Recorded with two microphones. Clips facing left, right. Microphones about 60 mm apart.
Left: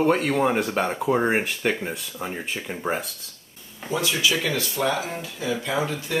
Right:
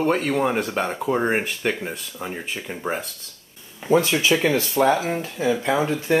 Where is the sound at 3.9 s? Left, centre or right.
Right.